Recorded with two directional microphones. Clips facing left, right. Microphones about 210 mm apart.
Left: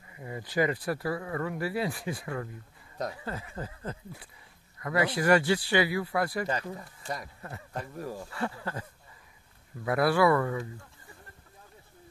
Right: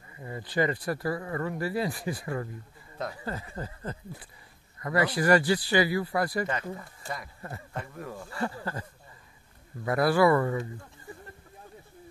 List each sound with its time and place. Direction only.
0.1 s speech: 15° left (ahead or behind)
7.4 s speech: centre (ahead or behind)
7.8 s speech: 35° left (ahead or behind)
8.3 s speech: centre (ahead or behind)
9.8 s speech: centre (ahead or behind)